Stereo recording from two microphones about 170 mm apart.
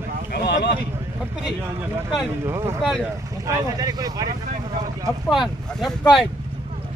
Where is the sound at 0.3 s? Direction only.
85° left.